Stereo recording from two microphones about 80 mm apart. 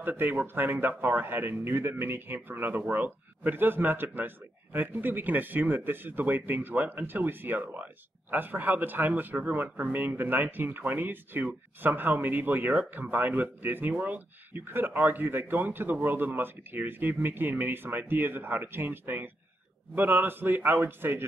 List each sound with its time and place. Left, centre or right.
0.0 s speech: right